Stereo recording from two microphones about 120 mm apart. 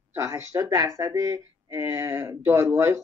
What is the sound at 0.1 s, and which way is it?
Speech, 25° right (ahead or behind).